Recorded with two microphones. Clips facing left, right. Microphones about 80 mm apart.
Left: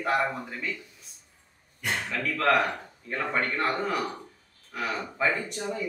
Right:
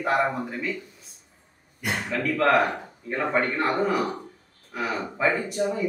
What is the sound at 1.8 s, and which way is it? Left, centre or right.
Speech, centre.